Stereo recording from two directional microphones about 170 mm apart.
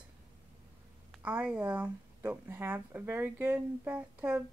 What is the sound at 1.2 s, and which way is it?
Speech, 10° right (ahead or behind).